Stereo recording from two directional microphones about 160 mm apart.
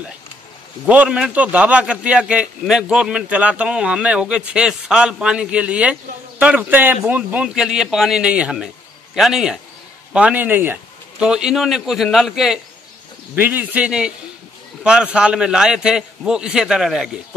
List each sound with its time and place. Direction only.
0.8 s a man's voice: 10° right (ahead or behind)